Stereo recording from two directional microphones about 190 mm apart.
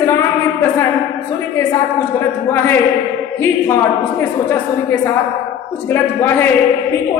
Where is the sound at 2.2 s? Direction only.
10° left (ahead or behind).